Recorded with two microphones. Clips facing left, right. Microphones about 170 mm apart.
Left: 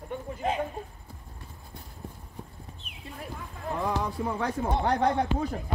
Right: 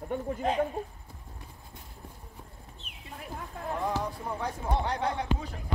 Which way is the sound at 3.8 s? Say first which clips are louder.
Left 4 dB; 70° left (ahead or behind).